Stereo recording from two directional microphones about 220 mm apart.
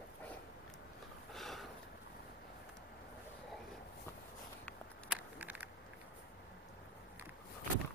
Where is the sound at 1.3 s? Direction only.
Centre (ahead or behind).